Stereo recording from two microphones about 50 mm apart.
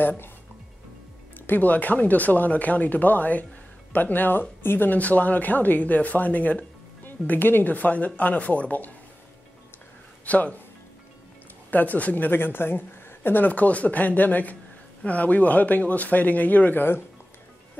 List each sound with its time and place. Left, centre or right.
1.5 s speech: left
10.2 s speech: left
11.7 s speech: left
12.3 s speech: left
13.5 s speech: left